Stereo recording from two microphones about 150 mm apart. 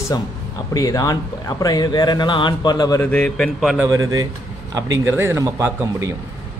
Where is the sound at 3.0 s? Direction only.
10° left (ahead or behind).